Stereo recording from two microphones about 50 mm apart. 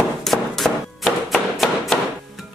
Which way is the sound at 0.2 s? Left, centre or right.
Centre.